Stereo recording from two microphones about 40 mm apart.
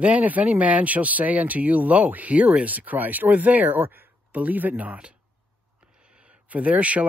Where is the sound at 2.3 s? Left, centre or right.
Right.